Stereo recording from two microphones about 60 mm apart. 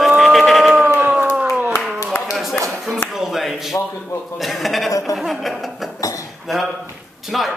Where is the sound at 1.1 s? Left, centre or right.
Right.